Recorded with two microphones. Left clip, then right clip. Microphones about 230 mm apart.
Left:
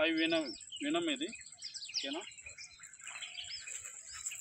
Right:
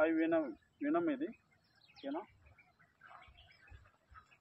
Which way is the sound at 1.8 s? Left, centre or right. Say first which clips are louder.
Left 4 dB; centre.